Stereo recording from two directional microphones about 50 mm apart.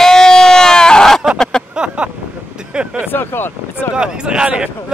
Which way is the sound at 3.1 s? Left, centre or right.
Left.